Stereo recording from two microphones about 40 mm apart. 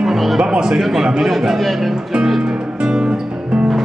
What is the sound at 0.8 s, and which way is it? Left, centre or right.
A man's voice, centre.